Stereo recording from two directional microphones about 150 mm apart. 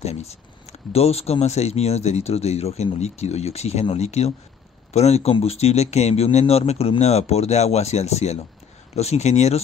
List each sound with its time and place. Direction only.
0.0 s speech: 45° left (ahead or behind)